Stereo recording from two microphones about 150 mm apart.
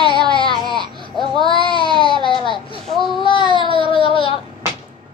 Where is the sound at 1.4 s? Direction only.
35° left (ahead or behind).